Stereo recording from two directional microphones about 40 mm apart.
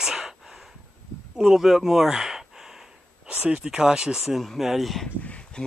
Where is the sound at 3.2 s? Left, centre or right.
Right; by 5.0 s centre.